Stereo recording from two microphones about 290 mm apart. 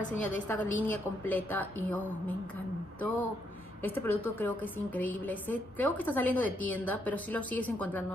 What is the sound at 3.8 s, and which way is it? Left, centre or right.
A woman's voice, centre.